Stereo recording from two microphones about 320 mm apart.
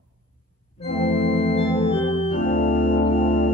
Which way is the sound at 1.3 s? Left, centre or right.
Centre.